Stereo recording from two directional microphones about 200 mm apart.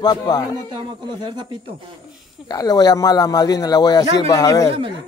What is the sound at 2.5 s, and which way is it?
A man's voice, 20° left (ahead or behind).